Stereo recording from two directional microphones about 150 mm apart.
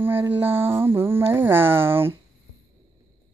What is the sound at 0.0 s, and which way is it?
Mantra, 15° right (ahead or behind).